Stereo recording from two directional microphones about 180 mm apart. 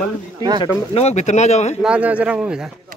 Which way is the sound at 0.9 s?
40° left (ahead or behind).